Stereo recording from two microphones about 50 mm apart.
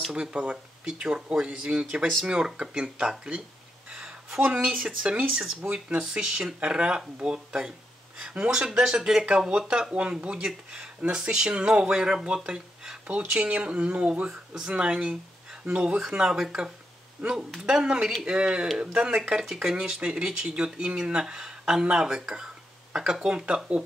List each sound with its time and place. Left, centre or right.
0.1 s speech: right
3.9 s a sound: right
4.8 s speech: centre